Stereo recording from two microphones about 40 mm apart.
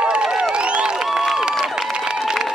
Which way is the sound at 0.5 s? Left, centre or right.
Right.